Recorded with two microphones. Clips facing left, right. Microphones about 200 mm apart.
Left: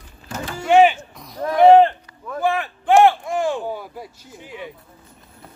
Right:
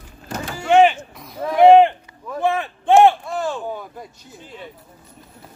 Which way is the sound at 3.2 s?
15° left (ahead or behind).